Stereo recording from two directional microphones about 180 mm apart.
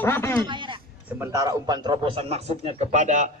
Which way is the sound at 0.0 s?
10° left (ahead or behind).